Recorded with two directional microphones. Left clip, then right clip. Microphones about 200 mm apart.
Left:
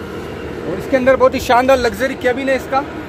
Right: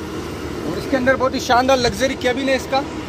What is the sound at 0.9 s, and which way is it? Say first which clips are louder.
Speech: left 6 dB; 35° left (ahead or behind).